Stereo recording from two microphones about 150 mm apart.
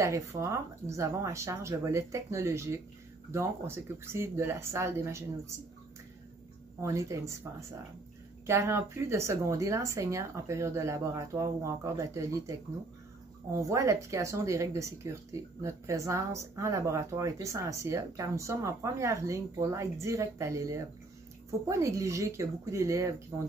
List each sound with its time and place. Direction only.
0.0 s speech: 20° right (ahead or behind)
6.8 s speech: 20° right (ahead or behind)
8.5 s speech: 20° right (ahead or behind)